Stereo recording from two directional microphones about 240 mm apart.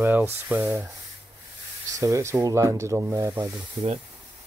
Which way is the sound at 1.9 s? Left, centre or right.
Centre.